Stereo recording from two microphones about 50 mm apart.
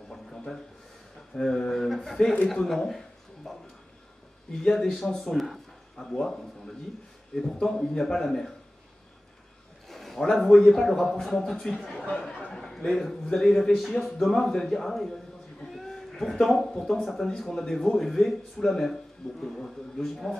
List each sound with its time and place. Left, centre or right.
0.1 s a sound: centre
2.4 s a man's voice: centre
3.4 s a sound: centre
4.5 s a man's voice: centre
5.3 s a man's voice: centre
6.2 s a man's voice: centre
9.8 s a sound: centre
10.3 s a man's voice: centre
12.1 s a man's voice: centre